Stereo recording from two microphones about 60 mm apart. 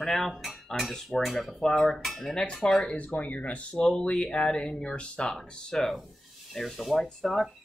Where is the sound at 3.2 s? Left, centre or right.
Left.